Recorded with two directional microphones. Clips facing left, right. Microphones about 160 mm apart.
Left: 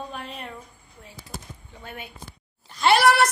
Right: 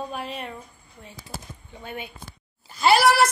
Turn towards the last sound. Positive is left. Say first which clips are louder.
# even
turn(degrees=0)  # may be behind; listen again after turning